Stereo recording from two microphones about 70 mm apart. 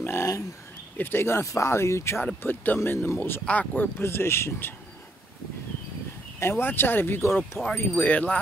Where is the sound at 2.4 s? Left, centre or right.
Left.